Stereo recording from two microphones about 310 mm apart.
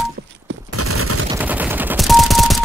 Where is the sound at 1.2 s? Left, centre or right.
Centre.